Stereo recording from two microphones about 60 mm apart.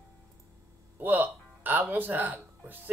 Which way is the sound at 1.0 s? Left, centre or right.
Right.